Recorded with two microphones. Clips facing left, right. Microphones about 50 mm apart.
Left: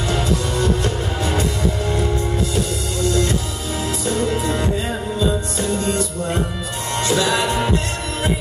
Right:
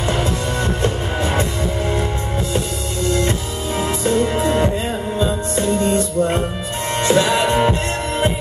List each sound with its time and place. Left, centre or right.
0.1 s music: right
3.8 s music: right